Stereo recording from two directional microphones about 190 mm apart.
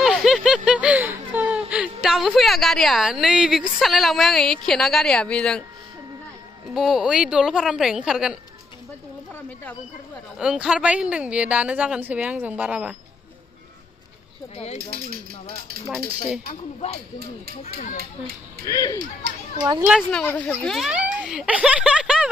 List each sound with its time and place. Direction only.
0.0 s a sound: centre (ahead or behind)
0.7 s a woman's voice: 5° right (ahead or behind)
6.7 s speech: centre (ahead or behind)
10.4 s speech: 5° right (ahead or behind)
16.8 s speech: 35° left (ahead or behind)
18.7 s speech: 20° left (ahead or behind)
20.0 s speech: 5° left (ahead or behind)